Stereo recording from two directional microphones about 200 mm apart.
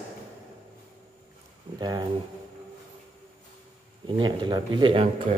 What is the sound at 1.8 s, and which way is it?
Speech, 20° right (ahead or behind).